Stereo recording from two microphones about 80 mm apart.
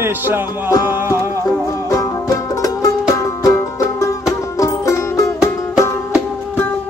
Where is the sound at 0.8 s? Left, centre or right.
Right.